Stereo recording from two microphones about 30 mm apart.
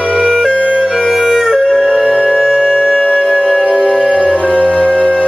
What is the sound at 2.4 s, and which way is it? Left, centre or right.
Music, centre.